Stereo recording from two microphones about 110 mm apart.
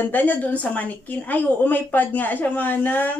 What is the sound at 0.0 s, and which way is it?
A woman's voice, 15° left (ahead or behind).